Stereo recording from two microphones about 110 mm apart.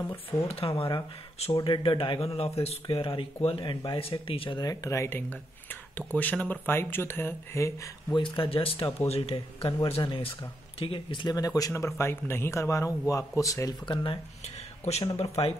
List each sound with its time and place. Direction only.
0.0 s speech: 20° left (ahead or behind)
0.5 s speech: 60° left (ahead or behind)
2.2 s speech: 60° left (ahead or behind)
4.6 s speech: 30° left (ahead or behind)
8.1 s speech: 50° left (ahead or behind); by 13.7 s 30° left (ahead or behind)
14.4 s speech: 75° left (ahead or behind)